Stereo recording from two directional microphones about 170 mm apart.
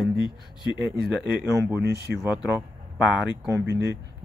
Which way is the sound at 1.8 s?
80° right.